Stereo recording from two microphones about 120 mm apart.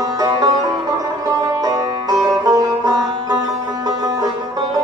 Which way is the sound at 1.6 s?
30° right (ahead or behind).